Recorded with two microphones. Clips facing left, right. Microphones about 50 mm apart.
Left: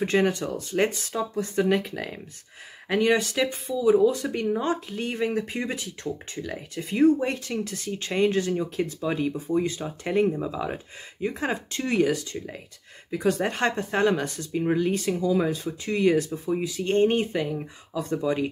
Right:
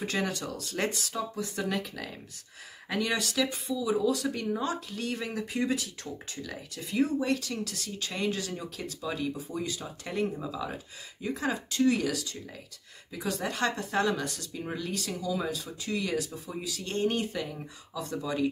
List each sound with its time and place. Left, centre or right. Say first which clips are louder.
0.0 s speech: left 8 dB; left
2.9 s speech: left 8 dB; left
6.8 s speech: left 8 dB; left
13.1 s speech: left 8 dB; left